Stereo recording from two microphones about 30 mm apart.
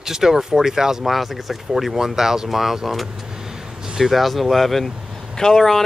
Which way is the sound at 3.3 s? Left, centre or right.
Centre.